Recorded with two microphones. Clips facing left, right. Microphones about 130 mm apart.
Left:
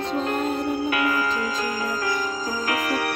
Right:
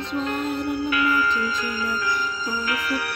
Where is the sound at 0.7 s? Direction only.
55° left (ahead or behind).